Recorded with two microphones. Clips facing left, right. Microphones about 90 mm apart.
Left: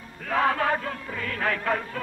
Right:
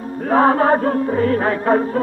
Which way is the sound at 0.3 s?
35° right (ahead or behind).